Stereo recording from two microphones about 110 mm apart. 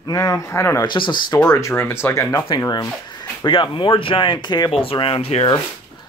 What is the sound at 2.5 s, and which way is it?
Speech, 35° left (ahead or behind).